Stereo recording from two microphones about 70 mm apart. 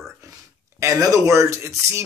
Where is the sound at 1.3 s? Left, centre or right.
Right.